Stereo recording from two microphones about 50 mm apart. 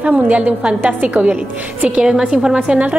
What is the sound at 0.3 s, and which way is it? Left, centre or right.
A woman's voice, right.